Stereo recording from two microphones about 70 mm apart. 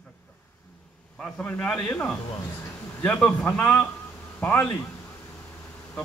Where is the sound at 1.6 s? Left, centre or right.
Centre.